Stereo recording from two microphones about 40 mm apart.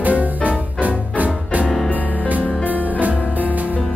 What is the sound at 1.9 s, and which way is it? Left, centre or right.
Music, left.